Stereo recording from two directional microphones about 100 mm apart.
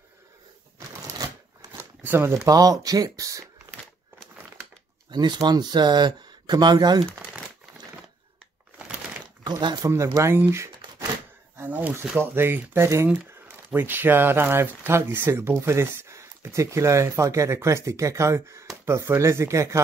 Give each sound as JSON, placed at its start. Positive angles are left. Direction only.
{"t": 0.7, "sound": "a sound", "side_deg": -40}
{"t": 1.8, "sound": "speech", "side_deg": -20}
{"t": 5.1, "sound": "speech", "side_deg": -45}
{"t": 9.4, "sound": "a sound", "side_deg": -45}
{"t": 10.1, "sound": "speech", "side_deg": -25}
{"t": 11.5, "sound": "speech", "side_deg": -20}